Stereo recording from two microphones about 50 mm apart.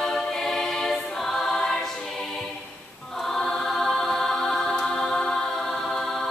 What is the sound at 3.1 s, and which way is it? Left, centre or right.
Choir, centre.